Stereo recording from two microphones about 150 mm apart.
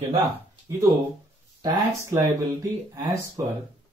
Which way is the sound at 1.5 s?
25° right (ahead or behind).